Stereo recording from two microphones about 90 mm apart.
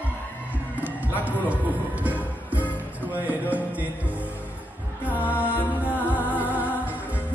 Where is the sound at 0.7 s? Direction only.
15° right (ahead or behind).